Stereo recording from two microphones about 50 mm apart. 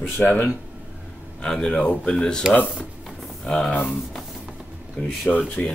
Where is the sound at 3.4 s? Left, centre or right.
Centre.